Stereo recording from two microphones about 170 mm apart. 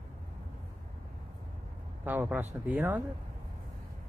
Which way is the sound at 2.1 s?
10° right (ahead or behind).